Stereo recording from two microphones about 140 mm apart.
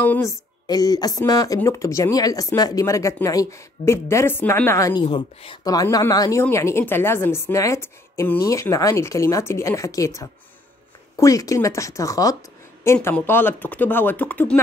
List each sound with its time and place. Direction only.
0.0 s speech: 15° left (ahead or behind)
5.0 s speech: 40° left (ahead or behind)
5.6 s speech: 25° left (ahead or behind); by 14.6 s 10° left (ahead or behind)